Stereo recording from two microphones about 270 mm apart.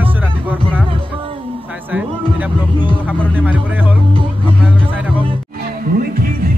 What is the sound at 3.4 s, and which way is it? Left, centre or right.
Speech, centre.